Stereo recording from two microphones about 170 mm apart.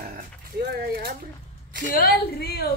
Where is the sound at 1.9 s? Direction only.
65° left (ahead or behind).